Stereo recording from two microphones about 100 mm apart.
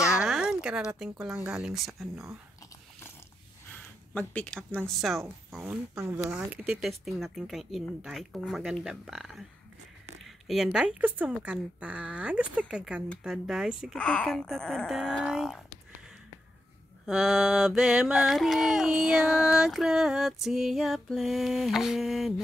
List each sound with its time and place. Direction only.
0.0 s a sound: 10° right (ahead or behind)
1.5 s mantra: 5° right (ahead or behind)
3.7 s a sound: 15° left (ahead or behind)
4.8 s mantra: centre (ahead or behind)
5.9 s speech: 30° right (ahead or behind)
6.3 s speech: 10° right (ahead or behind)
6.8 s mantra: centre (ahead or behind)
10.2 s speech: centre (ahead or behind)
13.2 s mantra: 5° right (ahead or behind)
13.9 s speech: 10° left (ahead or behind)
15.2 s mantra: 5° right (ahead or behind)
17.0 s mantra: 5° right (ahead or behind)